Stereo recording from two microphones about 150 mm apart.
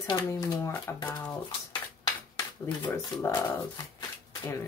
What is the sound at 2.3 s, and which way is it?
Speech, 20° left (ahead or behind).